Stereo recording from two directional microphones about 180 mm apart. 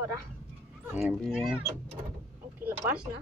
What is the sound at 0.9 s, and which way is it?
Speech, centre (ahead or behind).